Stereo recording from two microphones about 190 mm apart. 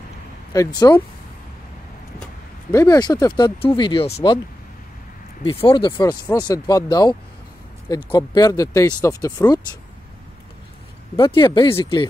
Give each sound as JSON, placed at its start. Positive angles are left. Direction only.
{"t": 0.5, "sound": "speech", "side_deg": 20}
{"t": 2.7, "sound": "speech", "side_deg": 15}
{"t": 5.4, "sound": "speech", "side_deg": 30}
{"t": 11.1, "sound": "speech", "side_deg": 25}